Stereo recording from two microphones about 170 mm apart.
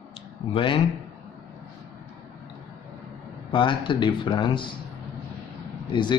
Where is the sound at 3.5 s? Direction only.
30° left (ahead or behind).